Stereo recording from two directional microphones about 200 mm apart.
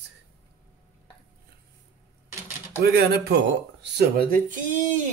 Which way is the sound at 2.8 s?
50° right (ahead or behind).